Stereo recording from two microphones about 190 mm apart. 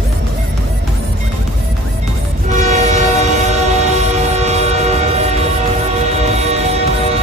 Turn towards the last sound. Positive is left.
turn(degrees=-35)  # may be behind; listen again after turning